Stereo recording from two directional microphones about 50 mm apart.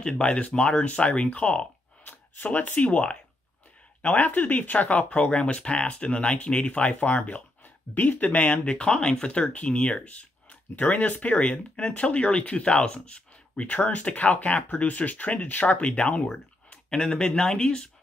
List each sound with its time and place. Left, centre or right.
0.0 s speech: left
2.0 s speech: left; by 17.8 s centre